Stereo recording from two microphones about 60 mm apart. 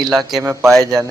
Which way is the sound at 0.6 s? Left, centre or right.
Centre.